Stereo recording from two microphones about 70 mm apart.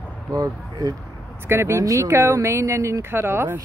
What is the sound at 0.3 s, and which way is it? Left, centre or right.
Speech, right.